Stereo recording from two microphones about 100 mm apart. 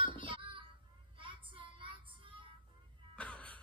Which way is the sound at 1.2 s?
60° right (ahead or behind).